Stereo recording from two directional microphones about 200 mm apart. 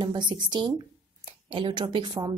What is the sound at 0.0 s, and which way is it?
Speech, 20° right (ahead or behind).